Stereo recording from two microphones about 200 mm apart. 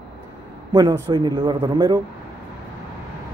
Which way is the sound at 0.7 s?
20° right (ahead or behind).